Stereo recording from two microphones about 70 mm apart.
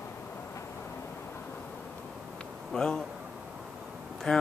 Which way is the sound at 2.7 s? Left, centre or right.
Centre.